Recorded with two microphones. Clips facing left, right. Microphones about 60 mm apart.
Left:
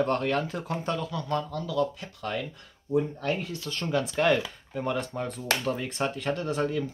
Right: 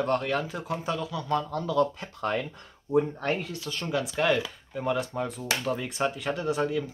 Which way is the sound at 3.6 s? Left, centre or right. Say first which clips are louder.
Left 1 dB; centre.